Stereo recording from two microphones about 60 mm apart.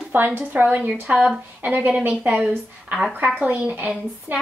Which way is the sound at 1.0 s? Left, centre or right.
Centre.